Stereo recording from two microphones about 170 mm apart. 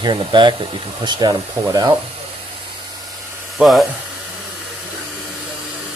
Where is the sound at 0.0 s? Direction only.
25° right (ahead or behind).